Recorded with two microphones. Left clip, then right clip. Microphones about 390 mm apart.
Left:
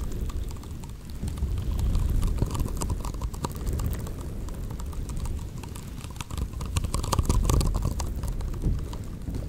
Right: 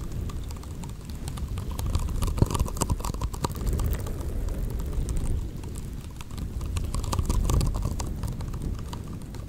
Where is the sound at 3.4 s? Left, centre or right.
Right.